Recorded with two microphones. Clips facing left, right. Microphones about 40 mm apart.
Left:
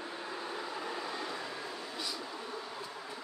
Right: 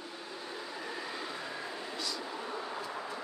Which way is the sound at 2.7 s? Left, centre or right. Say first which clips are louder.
Right 4 dB; right.